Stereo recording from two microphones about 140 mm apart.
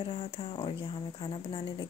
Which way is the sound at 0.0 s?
40° left (ahead or behind).